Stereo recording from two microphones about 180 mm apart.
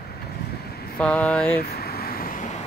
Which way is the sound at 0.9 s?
5° left (ahead or behind).